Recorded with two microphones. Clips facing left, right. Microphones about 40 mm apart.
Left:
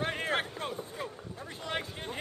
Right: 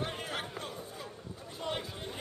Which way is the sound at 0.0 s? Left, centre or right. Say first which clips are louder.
Left 6 dB; left.